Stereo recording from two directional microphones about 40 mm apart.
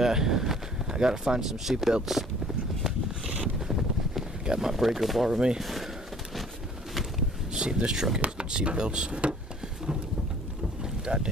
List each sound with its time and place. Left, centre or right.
0.0 s speech: centre
1.6 s speech: centre
2.0 s a sound: centre
3.5 s wind noise: centre
4.5 s speech: centre
7.5 s speech: centre
10.8 s boat: centre